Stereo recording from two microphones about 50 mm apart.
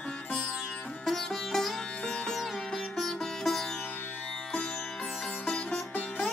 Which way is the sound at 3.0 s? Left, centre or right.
Centre.